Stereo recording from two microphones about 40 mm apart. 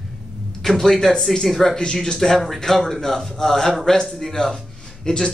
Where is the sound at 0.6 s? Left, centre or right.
Centre.